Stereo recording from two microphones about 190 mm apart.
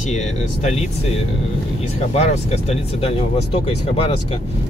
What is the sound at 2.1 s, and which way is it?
Speech, 35° left (ahead or behind).